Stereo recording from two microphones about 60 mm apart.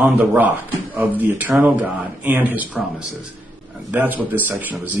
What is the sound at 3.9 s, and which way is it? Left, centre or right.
Speech, right.